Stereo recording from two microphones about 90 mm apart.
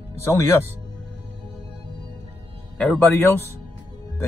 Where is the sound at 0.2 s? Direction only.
30° left (ahead or behind).